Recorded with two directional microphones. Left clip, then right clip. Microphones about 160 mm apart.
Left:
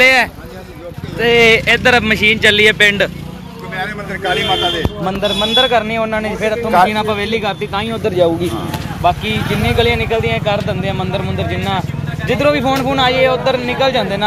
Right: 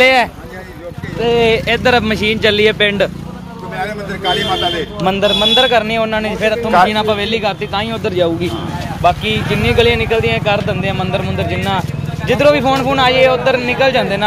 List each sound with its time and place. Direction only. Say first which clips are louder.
0.0 s speech: even; 10° right (ahead or behind)
1.2 s speech: left 3 dB; 5° left (ahead or behind)
3.7 s vehicle: even; 65° right (ahead or behind)
5.0 s speech: right 6 dB; 50° right (ahead or behind)
5.3 s speech: right 3 dB; 20° right (ahead or behind)
5.6 s speech: right 1 dB; 10° right (ahead or behind)